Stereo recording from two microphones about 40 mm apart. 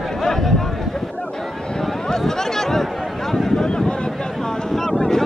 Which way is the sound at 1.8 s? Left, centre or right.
Centre.